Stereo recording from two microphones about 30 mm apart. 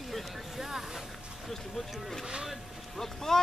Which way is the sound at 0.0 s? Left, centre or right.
Centre.